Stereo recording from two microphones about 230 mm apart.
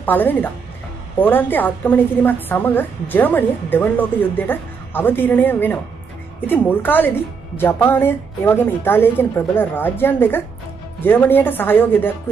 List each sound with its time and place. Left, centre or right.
0.0 s a woman's voice: centre